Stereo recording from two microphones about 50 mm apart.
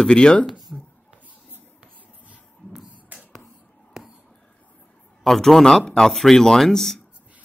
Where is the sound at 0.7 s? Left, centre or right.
Left.